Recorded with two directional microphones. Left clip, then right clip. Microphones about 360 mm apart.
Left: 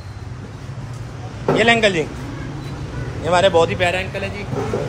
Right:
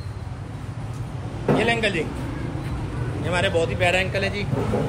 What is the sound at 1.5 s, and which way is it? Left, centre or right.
Speech, centre.